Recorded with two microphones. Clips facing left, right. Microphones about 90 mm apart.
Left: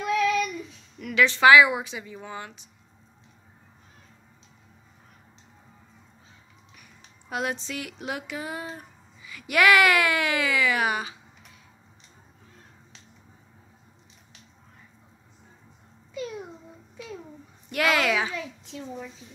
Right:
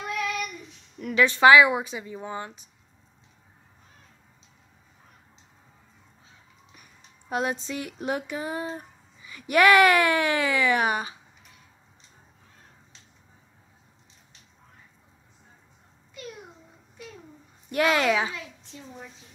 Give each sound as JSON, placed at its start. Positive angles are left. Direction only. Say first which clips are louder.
{"t": 0.0, "sound": "child singing", "louder": "left 6 dB", "side_deg": 0}
{"t": 1.0, "sound": "a woman's voice", "louder": "right 1 dB", "side_deg": -35}
{"t": 7.2, "sound": "speech", "louder": "right 2 dB", "side_deg": -35}
{"t": 17.6, "sound": "speech", "louder": "right 1 dB", "side_deg": -35}
{"t": 18.1, "sound": "a child's voice", "louder": "even", "side_deg": 0}